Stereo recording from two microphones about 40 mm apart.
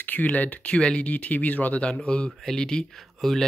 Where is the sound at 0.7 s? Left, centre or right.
Left.